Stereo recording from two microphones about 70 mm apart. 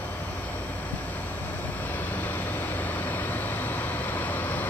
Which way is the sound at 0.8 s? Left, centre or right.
Left.